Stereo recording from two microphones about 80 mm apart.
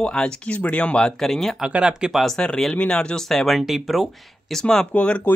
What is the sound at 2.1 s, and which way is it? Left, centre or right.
Speech, centre.